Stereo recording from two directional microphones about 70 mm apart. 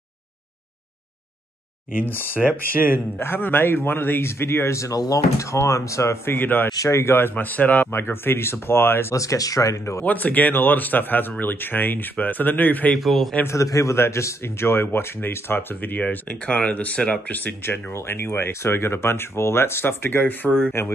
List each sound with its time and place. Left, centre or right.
2.0 s speech: left
9.1 s speech: left
10.0 s speech: left
12.9 s a man's voice: centre
13.5 s speech: left